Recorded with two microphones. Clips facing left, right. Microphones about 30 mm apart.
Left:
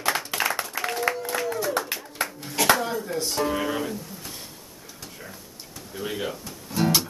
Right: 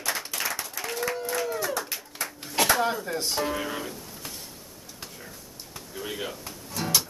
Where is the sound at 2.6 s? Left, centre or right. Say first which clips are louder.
Left 3 dB; right.